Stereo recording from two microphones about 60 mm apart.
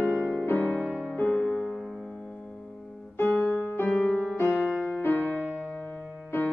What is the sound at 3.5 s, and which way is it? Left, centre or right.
Music, left.